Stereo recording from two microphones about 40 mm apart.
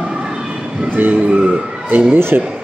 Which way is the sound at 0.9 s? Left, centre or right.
Right.